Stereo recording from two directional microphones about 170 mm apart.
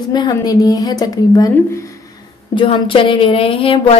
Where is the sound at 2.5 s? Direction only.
30° left (ahead or behind).